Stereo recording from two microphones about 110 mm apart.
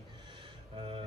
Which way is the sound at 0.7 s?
50° right (ahead or behind).